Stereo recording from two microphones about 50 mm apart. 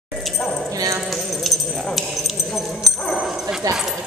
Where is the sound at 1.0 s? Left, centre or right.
Centre.